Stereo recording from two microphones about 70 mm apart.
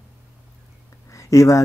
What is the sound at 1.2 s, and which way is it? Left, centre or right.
Speech, left.